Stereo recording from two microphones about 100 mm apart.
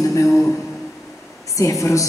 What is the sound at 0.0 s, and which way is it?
Speech, 35° left (ahead or behind).